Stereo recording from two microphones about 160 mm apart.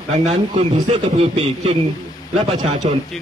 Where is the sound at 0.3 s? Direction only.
40° right (ahead or behind).